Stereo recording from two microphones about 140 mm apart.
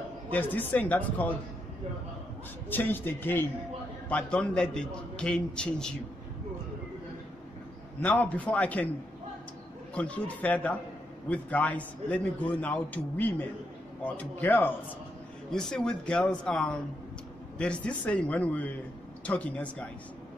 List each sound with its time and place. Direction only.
0.3 s a man's voice: 10° left (ahead or behind)
2.7 s a man's voice: 15° left (ahead or behind)
8.0 s a man's voice: 10° left (ahead or behind)
9.9 s a man's voice: 10° left (ahead or behind)